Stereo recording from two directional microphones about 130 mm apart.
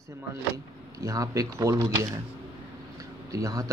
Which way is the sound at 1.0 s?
25° right (ahead or behind).